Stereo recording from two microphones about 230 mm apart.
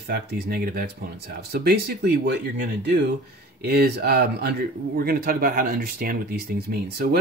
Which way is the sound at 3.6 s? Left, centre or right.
Right.